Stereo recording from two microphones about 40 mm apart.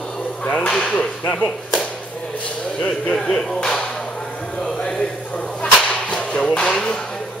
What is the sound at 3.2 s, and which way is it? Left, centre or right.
Speech, centre.